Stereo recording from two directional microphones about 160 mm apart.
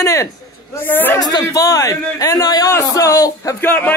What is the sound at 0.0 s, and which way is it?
A man's voice, 20° left (ahead or behind).